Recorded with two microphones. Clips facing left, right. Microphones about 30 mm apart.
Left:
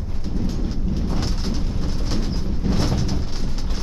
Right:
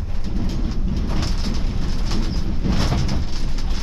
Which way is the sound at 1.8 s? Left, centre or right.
Right.